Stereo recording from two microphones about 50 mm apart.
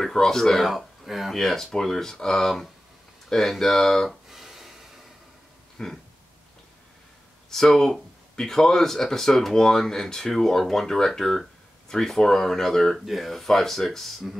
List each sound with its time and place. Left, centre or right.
0.0 s speech: centre
1.4 s speech: centre
4.3 s a sound: centre
5.8 s speech: centre
7.4 s speech: centre